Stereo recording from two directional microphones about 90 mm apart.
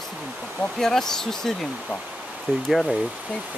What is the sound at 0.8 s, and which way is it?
Speech, 5° left (ahead or behind).